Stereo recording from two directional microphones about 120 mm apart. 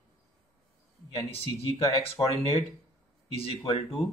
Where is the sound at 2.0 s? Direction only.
50° left (ahead or behind).